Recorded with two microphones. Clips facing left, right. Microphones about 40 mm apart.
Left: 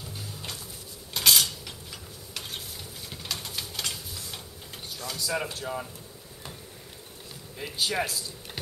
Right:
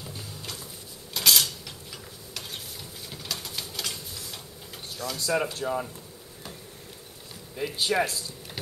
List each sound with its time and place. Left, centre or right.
1.1 s cutlery: centre
5.0 s speech: centre
7.5 s speech: centre